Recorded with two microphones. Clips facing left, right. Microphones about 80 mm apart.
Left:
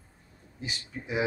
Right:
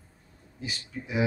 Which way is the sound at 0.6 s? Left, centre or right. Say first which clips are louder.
Right 1 dB; left.